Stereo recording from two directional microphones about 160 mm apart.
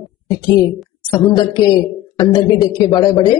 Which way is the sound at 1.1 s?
25° left (ahead or behind).